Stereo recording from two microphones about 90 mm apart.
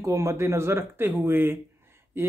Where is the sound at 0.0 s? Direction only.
35° right (ahead or behind).